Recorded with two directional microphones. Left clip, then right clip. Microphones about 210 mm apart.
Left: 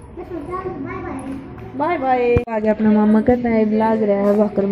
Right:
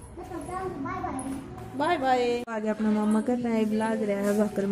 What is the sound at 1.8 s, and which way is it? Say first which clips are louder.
Speech: left 7 dB; 15° right (ahead or behind).